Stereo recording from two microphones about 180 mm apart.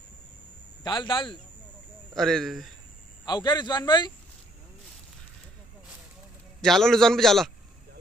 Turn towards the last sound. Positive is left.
turn(degrees=0)  # may be behind; listen again after turning